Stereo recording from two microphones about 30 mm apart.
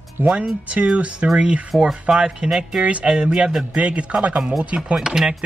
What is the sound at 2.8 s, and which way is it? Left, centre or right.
Speech, right.